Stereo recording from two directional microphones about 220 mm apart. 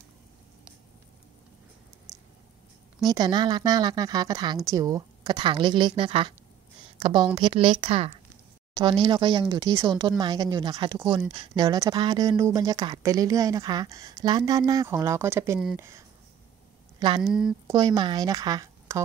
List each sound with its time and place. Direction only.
3.1 s a woman's voice: 20° right (ahead or behind)
17.2 s speech: centre (ahead or behind)
17.6 s a woman's voice: 15° right (ahead or behind)